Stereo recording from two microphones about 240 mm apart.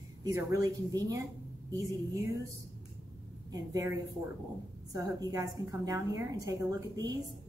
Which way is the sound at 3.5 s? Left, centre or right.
Centre.